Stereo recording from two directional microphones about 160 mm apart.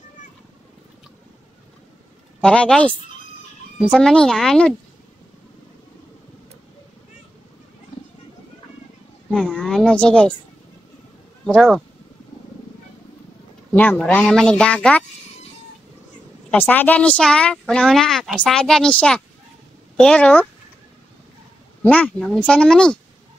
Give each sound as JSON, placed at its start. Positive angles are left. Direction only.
{"t": 2.4, "sound": "speech", "side_deg": 5}
{"t": 9.3, "sound": "a sound", "side_deg": 5}
{"t": 11.4, "sound": "speech", "side_deg": 0}
{"t": 13.7, "sound": "speech", "side_deg": 10}
{"t": 16.4, "sound": "speech", "side_deg": 10}
{"t": 21.8, "sound": "speech", "side_deg": 10}